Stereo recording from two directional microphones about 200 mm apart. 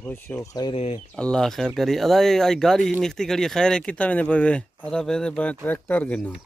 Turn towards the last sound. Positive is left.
turn(degrees=5)  # may be behind; listen again after turning